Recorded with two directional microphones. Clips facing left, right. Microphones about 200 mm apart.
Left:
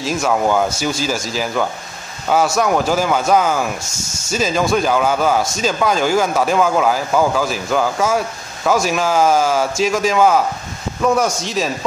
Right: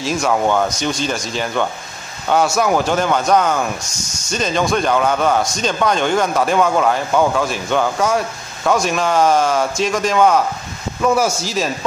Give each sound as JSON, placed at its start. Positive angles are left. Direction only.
{"t": 0.0, "sound": "speech", "side_deg": 0}
{"t": 3.8, "sound": "speech", "side_deg": 25}
{"t": 4.3, "sound": "speech", "side_deg": 5}